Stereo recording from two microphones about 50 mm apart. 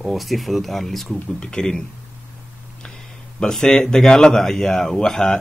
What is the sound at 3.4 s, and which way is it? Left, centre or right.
Speech, centre.